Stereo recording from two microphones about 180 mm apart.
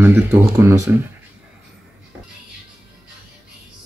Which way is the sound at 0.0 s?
10° right (ahead or behind).